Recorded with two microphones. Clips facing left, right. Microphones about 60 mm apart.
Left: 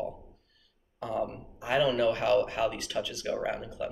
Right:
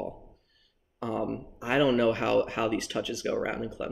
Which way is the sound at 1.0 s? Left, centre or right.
Right.